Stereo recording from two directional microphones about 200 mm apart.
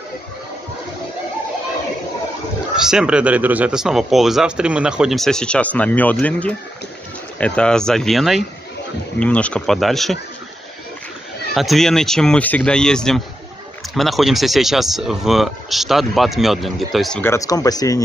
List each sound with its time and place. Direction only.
2.7 s speech: 5° right (ahead or behind)
11.5 s speech: centre (ahead or behind)
17.2 s speech: 15° left (ahead or behind)